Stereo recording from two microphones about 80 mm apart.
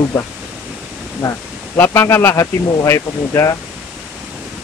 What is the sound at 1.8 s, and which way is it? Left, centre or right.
Speech, left.